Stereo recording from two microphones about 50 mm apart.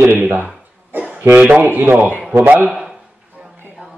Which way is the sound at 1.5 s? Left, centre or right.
Right.